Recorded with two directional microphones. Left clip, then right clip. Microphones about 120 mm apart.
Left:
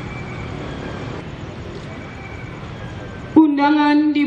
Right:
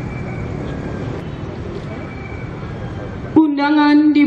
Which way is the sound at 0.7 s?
10° left (ahead or behind).